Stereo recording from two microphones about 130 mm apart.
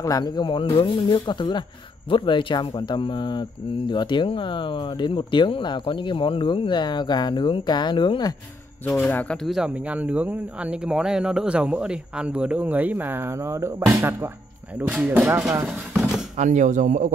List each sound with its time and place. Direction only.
0.0 s speech: 30° left (ahead or behind)
8.8 s speech: 15° left (ahead or behind)
9.5 s speech: 10° right (ahead or behind)
14.9 s speech: 5° right (ahead or behind)
15.9 s a sound: 5° right (ahead or behind)
16.3 s speech: 70° right (ahead or behind)